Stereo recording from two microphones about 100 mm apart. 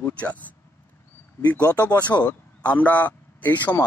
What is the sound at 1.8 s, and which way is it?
A man's voice, 15° left (ahead or behind).